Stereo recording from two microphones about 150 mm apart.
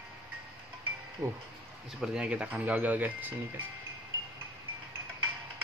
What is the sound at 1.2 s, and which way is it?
Speech, 20° right (ahead or behind).